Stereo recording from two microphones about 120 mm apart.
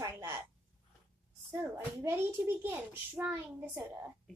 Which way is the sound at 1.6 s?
20° right (ahead or behind).